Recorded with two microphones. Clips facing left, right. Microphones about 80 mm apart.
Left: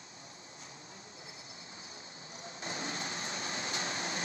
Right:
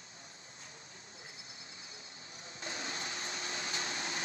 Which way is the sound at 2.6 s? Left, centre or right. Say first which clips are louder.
Left 2 dB; left.